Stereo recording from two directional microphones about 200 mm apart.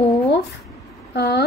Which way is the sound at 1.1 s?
55° left (ahead or behind).